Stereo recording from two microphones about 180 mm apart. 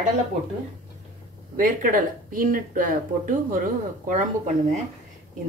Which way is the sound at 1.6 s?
50° right (ahead or behind).